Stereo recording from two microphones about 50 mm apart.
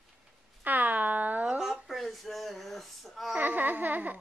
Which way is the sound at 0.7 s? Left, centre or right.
Right.